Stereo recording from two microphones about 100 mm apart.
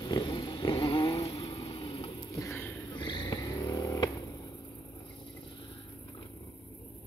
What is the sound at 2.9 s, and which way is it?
Vehicle, 50° left (ahead or behind).